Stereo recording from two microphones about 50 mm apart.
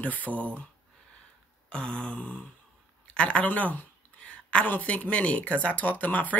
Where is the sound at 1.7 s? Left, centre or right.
Centre.